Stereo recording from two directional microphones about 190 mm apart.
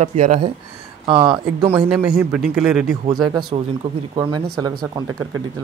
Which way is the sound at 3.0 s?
20° right (ahead or behind).